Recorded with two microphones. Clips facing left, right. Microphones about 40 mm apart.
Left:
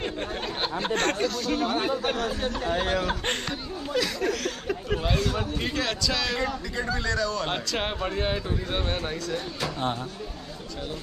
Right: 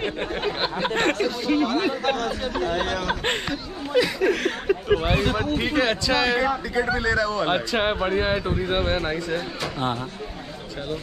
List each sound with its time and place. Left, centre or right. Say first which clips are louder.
0.0 s a sound: right 5 dB; right
1.2 s speech: right 4 dB; centre
1.7 s speech: right 3 dB; right
2.5 s speech: right 3 dB; centre
3.1 s chuckle: right 4 dB; centre
4.3 s a sound: right 6 dB; right
5.6 s speech: right 6 dB; right